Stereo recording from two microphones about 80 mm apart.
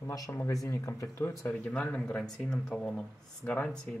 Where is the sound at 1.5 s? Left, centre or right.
Centre.